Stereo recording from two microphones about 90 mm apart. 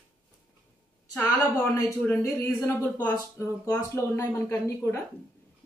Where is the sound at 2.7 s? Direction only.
20° left (ahead or behind).